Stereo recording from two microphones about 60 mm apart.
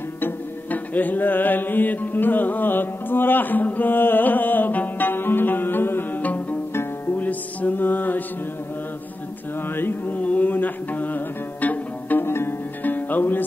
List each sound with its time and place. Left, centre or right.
0.2 s music: left
6.7 s music: left
7.2 s music: left
9.8 s music: left
12.3 s music: left